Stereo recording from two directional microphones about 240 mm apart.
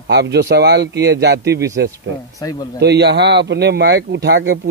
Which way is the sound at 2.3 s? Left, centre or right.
Centre.